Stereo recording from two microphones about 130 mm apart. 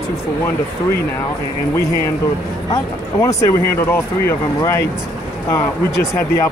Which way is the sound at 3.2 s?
20° left (ahead or behind).